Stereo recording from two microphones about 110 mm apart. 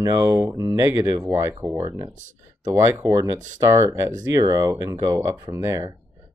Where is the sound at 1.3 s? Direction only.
20° right (ahead or behind).